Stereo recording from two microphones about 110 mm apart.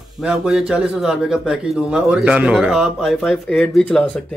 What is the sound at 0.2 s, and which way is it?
Speech, 5° right (ahead or behind).